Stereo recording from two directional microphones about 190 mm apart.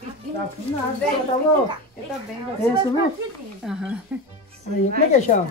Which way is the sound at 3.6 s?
5° right (ahead or behind).